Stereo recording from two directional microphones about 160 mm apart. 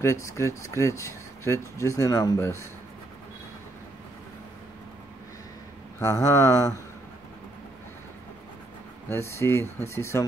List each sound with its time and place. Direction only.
0.0 s speech: 20° left (ahead or behind)
5.9 s speech: 20° left (ahead or behind)
9.1 s speech: 15° left (ahead or behind)